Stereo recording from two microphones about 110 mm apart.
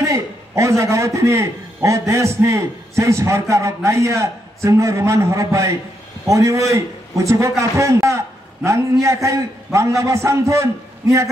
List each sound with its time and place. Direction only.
0.0 s a man's voice: 25° right (ahead or behind)